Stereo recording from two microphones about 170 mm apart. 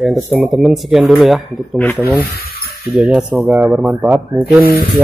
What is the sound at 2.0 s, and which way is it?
Speech, 15° right (ahead or behind).